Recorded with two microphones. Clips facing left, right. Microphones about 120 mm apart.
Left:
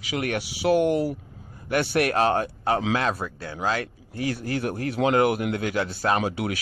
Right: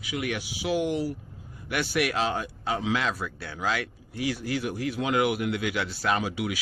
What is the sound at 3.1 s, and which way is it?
Speech, 30° left (ahead or behind).